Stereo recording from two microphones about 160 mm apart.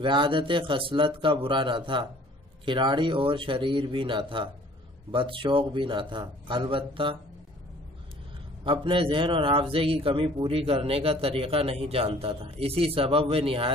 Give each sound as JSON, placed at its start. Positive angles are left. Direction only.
{"t": 0.0, "sound": "a man's voice", "side_deg": -30}
{"t": 8.6, "sound": "a man's voice", "side_deg": -30}